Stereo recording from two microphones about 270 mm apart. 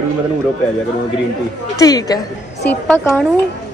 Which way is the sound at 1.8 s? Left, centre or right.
Centre.